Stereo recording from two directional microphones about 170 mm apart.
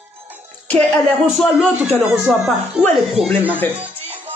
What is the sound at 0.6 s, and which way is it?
Speech, 5° left (ahead or behind).